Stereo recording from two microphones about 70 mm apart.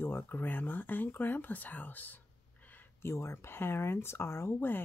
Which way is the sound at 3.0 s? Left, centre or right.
Left.